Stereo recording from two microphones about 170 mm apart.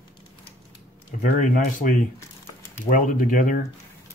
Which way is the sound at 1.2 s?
50° left (ahead or behind).